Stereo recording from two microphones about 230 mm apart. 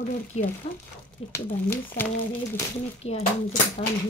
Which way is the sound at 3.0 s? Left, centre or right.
Left.